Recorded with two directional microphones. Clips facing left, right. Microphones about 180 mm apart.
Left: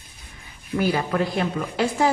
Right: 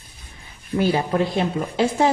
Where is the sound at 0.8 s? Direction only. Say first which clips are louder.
Right 2 dB; 25° right (ahead or behind).